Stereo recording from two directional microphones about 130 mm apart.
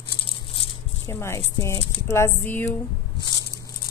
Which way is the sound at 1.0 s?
20° left (ahead or behind).